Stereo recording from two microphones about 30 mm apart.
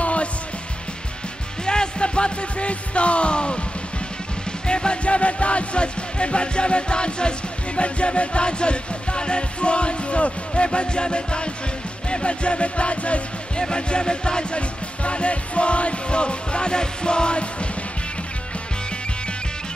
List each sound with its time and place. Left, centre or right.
0.0 s music: left
1.7 s music: left
13.6 s music: left
15.0 s music: left